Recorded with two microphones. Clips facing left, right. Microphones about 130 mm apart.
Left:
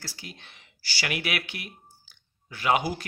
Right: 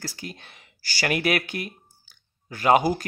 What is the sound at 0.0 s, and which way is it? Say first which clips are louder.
Speech: right 7 dB; 45° right (ahead or behind).